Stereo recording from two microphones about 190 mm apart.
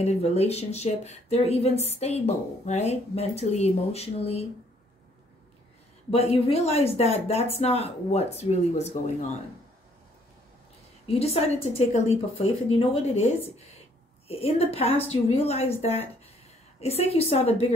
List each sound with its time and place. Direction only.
0.0 s a woman's voice: 35° left (ahead or behind)
6.0 s a woman's voice: 30° left (ahead or behind)
11.1 s a woman's voice: 30° left (ahead or behind)